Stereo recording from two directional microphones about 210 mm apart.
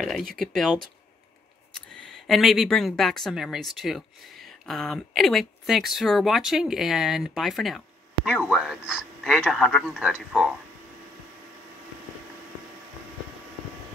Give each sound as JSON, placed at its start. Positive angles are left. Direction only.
{"t": 0.0, "sound": "speech", "side_deg": 0}
{"t": 1.7, "sound": "speech", "side_deg": 0}